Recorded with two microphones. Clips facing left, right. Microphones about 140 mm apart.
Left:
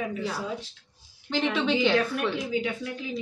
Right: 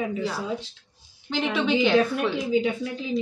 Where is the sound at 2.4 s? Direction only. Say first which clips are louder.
Right 5 dB; 25° right (ahead or behind).